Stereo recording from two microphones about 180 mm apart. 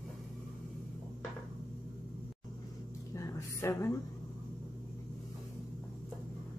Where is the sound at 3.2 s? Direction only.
15° left (ahead or behind).